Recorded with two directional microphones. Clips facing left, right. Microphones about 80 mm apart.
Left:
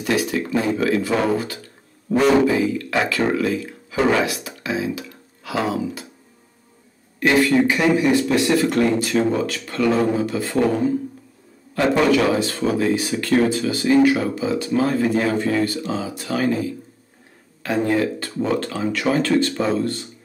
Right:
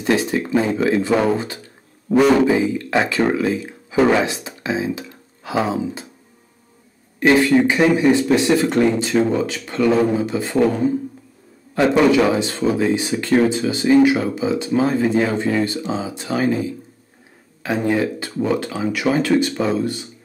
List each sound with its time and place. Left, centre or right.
0.0 s speech: right
7.2 s speech: right
11.7 s speech: right